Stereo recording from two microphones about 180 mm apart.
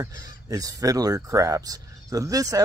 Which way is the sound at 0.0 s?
20° right (ahead or behind).